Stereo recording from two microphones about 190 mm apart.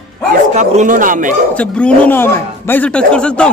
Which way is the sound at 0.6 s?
40° right (ahead or behind).